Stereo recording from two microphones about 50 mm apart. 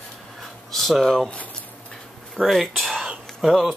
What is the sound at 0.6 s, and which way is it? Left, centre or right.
Speech, centre.